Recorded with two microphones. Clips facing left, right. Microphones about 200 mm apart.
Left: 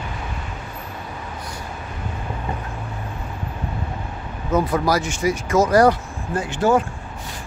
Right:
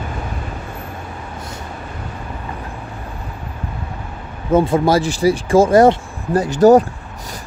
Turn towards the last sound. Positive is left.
turn(degrees=-40)  # may be behind; listen again after turning